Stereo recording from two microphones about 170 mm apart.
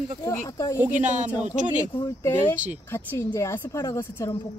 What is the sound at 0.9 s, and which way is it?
Speech, 45° right (ahead or behind).